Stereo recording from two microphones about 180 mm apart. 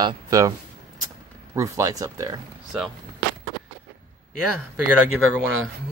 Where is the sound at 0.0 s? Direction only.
20° right (ahead or behind).